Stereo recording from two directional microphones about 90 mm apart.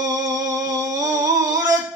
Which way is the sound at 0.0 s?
40° right (ahead or behind).